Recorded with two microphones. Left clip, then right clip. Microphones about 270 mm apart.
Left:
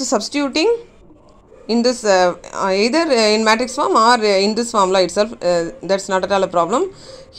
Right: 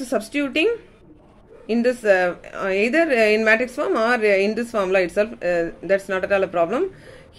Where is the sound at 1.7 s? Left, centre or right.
Left.